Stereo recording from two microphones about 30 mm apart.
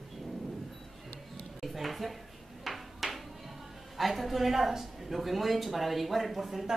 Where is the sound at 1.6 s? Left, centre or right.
Centre.